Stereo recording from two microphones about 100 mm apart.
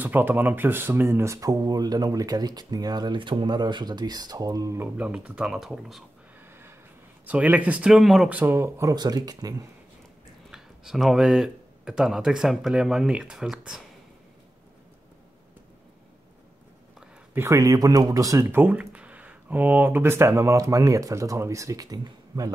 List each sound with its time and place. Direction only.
0.0 s speech: 20° right (ahead or behind); by 4.7 s 35° right (ahead or behind)
4.7 s speech: 15° right (ahead or behind)
7.2 s speech: 15° right (ahead or behind)
8.3 s speech: 20° right (ahead or behind)
8.9 s speech: 40° right (ahead or behind)
10.5 s speech: 5° right (ahead or behind)
17.3 s speech: 30° right (ahead or behind)
18.5 s speech: 20° right (ahead or behind); by 22.5 s 40° right (ahead or behind)